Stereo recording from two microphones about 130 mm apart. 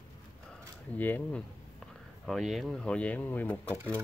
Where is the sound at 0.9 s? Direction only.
15° left (ahead or behind).